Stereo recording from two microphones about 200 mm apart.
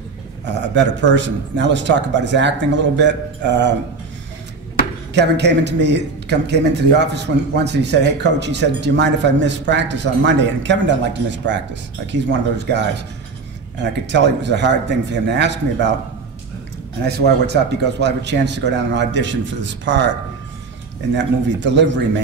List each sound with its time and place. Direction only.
0.6 s speech: 60° right (ahead or behind)
5.1 s speech: 60° right (ahead or behind)
14.0 s speech: 60° right (ahead or behind)
17.0 s speech: 55° right (ahead or behind)
21.1 s speech: 60° right (ahead or behind)